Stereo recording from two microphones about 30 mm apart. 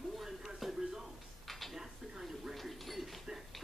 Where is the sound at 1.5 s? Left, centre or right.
Centre.